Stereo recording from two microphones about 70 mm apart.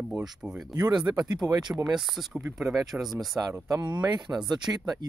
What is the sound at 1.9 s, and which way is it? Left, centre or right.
Speech, centre.